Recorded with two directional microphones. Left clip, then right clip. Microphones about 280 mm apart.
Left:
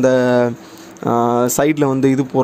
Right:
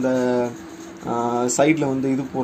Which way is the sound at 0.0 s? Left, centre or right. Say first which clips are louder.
Left 7 dB; left.